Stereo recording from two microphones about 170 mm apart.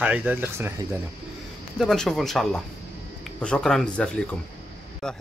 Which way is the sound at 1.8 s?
Centre (ahead or behind).